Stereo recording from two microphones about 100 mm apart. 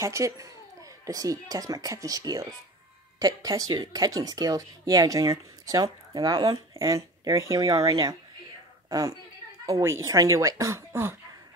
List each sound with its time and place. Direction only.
0.0 s speech: 30° right (ahead or behind)
8.8 s a sound: 35° right (ahead or behind)
9.7 s speech: 30° right (ahead or behind)